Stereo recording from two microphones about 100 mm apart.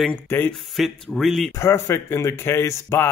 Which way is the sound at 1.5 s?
30° left (ahead or behind).